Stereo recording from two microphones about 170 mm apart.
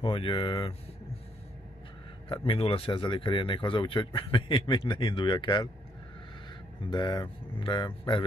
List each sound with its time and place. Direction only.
0.0 s speech: 30° left (ahead or behind)
2.2 s speech: 30° left (ahead or behind)
6.8 s speech: 25° left (ahead or behind)